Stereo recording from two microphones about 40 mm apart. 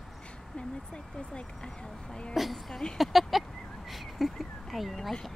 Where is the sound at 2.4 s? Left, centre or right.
Centre.